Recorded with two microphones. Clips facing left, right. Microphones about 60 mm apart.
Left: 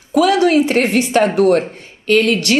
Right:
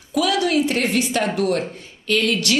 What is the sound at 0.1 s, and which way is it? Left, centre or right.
Speech, left.